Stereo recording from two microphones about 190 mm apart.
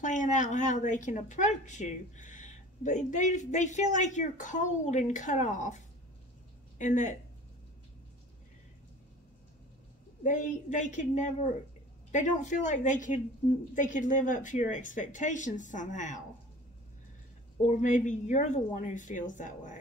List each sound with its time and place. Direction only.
0.0 s speech: 40° left (ahead or behind)
6.8 s speech: 40° left (ahead or behind)
10.2 s speech: 40° left (ahead or behind)
17.6 s speech: 40° left (ahead or behind)